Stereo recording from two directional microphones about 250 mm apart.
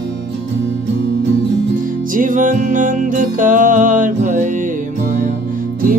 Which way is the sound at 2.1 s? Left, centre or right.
Right.